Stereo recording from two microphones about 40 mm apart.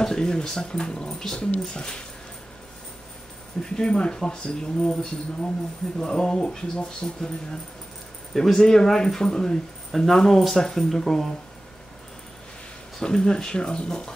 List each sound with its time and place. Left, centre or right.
0.0 s speech: centre
3.6 s speech: centre
8.4 s speech: centre
13.0 s speech: centre